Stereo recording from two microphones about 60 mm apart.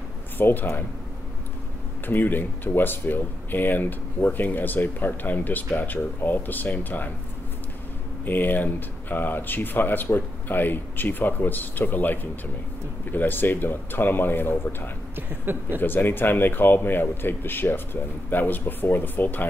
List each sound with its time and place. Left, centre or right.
0.4 s speech: left
2.0 s speech: left
8.3 s speech: left
15.1 s speech: right
15.8 s speech: left